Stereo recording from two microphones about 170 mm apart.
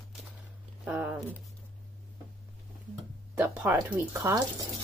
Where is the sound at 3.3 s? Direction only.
10° right (ahead or behind).